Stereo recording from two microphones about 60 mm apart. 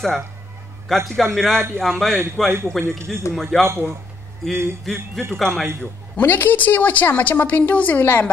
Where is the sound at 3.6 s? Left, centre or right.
Right.